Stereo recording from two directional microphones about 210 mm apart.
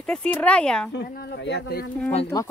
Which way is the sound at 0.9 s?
55° left (ahead or behind).